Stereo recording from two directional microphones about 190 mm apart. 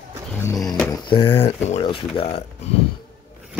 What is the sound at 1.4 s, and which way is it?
Speech, 30° left (ahead or behind).